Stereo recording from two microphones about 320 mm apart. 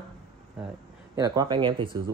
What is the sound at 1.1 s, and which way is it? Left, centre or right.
Speech, centre.